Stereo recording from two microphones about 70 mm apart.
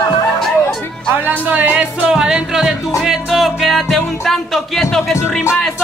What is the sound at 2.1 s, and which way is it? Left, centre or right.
Music, centre.